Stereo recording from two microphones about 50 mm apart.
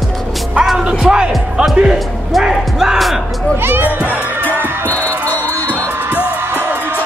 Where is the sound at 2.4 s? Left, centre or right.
Centre.